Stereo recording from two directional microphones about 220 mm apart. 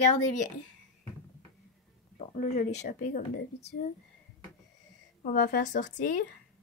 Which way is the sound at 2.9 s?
40° left (ahead or behind).